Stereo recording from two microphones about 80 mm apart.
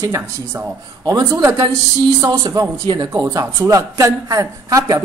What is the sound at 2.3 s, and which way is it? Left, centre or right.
A woman's voice, right.